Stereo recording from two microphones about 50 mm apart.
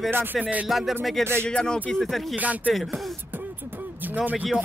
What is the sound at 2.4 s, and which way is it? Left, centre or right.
Speech, right.